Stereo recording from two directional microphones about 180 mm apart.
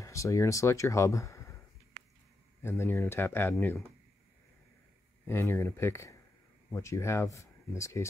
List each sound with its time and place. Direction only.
0.0 s speech: 15° left (ahead or behind)
2.6 s speech: 15° left (ahead or behind)
5.2 s speech: 15° left (ahead or behind)